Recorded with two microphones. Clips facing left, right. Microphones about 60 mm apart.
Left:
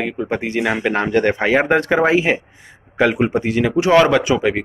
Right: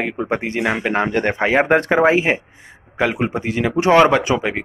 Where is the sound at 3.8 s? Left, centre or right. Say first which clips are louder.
Right 1 dB; right.